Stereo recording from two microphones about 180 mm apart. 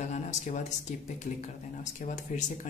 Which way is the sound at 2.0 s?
40° left (ahead or behind).